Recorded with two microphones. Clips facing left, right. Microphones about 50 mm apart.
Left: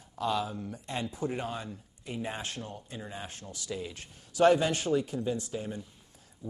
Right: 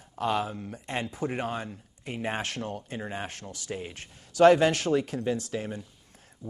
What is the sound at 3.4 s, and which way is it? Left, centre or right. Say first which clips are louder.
Speech: right 1 dB; right.